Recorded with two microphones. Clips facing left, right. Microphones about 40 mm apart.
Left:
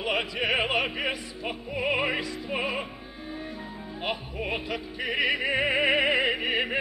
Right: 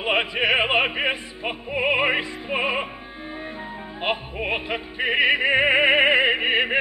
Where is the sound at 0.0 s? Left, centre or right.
Right.